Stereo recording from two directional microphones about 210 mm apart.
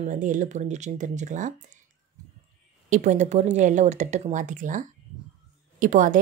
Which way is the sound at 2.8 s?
35° right (ahead or behind).